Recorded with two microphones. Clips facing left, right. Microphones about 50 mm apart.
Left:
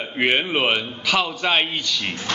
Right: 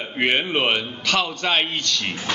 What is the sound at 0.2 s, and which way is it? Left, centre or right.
A man's voice, centre.